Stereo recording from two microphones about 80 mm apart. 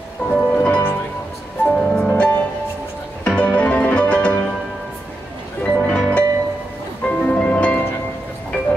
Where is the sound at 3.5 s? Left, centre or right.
Centre.